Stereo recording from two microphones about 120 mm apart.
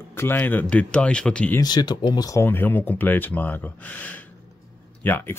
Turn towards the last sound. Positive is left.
turn(degrees=20)  # may be behind; listen again after turning